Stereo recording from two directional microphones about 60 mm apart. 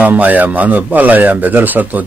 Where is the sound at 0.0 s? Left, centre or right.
Right.